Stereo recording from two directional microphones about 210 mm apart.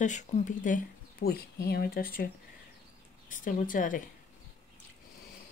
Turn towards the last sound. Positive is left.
turn(degrees=40)  # may be behind; listen again after turning